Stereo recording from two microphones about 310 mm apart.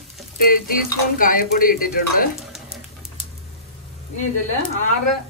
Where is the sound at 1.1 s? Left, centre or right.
Left.